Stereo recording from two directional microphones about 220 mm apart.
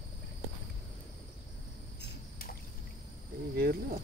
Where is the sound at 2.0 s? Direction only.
40° left (ahead or behind).